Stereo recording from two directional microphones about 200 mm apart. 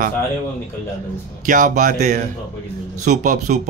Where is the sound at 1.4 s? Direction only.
40° right (ahead or behind).